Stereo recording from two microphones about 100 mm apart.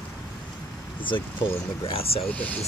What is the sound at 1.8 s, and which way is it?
Speech, 75° left (ahead or behind).